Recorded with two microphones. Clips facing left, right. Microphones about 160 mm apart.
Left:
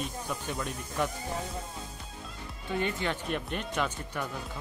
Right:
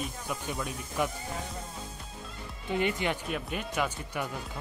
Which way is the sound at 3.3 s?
5° right (ahead or behind).